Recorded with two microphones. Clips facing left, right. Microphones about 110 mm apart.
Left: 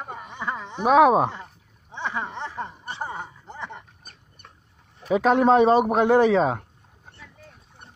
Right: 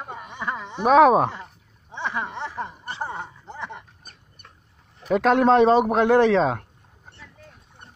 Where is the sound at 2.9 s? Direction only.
Centre (ahead or behind).